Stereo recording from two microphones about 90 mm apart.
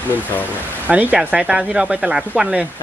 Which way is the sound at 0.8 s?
15° right (ahead or behind).